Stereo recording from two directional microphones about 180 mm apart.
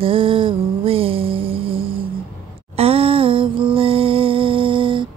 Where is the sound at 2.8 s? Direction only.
30° right (ahead or behind).